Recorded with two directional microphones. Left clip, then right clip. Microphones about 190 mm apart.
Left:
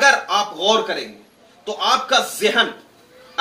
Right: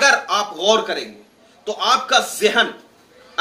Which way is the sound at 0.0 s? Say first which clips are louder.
Even; 15° right (ahead or behind).